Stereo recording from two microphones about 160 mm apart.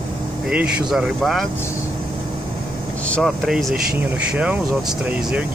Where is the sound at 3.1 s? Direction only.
Centre (ahead or behind).